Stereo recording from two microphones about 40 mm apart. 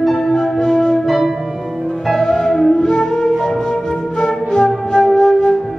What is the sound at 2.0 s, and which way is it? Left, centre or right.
Music, centre.